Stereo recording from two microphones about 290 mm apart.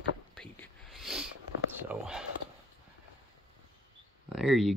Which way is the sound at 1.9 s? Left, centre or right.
Centre.